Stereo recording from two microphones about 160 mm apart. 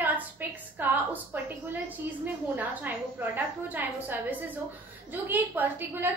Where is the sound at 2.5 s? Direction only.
10° right (ahead or behind).